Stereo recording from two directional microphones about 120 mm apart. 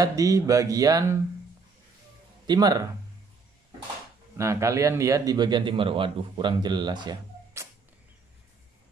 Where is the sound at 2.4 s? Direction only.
35° right (ahead or behind).